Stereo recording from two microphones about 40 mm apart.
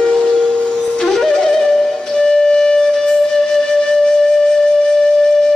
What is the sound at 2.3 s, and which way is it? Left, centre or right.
Flute, left.